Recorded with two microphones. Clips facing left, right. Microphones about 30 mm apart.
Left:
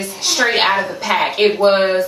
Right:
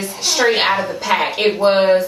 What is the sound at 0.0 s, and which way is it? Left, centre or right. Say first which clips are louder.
Speech: right 1 dB; centre.